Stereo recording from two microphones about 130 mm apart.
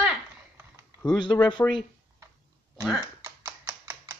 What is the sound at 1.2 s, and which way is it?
Speech, 35° left (ahead or behind).